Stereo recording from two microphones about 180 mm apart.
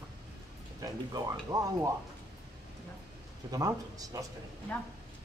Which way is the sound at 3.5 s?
20° right (ahead or behind).